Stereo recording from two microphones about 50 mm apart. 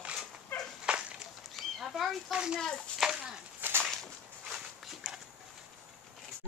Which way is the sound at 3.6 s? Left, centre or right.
Right.